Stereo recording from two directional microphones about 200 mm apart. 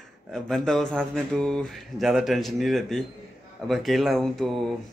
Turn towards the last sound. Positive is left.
turn(degrees=0)  # may be behind; listen again after turning